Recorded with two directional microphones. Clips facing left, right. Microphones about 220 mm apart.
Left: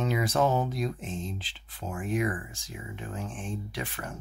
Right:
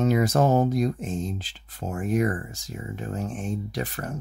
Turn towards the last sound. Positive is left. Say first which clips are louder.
# right 6 dB
turn(degrees=-40)  # may be behind; listen again after turning